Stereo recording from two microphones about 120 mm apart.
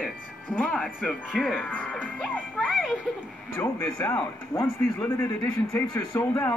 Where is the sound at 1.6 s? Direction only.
15° left (ahead or behind).